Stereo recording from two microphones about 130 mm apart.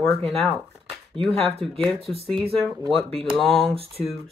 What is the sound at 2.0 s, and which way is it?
Speech, 50° right (ahead or behind).